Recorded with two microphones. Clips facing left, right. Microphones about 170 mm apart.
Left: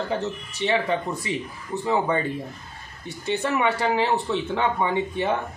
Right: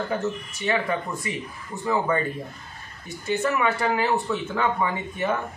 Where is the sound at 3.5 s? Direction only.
20° left (ahead or behind).